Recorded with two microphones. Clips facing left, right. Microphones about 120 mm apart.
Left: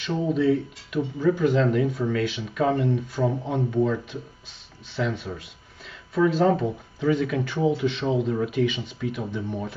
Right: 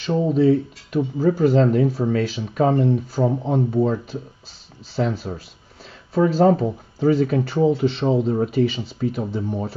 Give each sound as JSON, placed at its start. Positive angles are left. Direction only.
{"t": 0.0, "sound": "speech", "side_deg": -35}